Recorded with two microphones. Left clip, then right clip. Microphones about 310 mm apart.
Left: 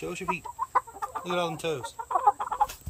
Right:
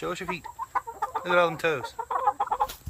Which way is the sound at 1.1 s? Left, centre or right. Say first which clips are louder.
Right 7 dB; right.